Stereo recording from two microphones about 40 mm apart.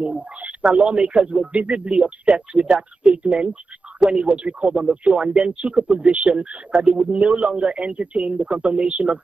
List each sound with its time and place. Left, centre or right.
0.0 s speech: right